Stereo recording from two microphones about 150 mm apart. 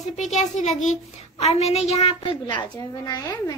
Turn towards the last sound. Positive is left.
turn(degrees=25)  # may be behind; listen again after turning